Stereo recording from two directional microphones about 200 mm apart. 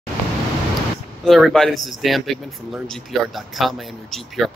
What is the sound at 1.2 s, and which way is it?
Speech, centre (ahead or behind).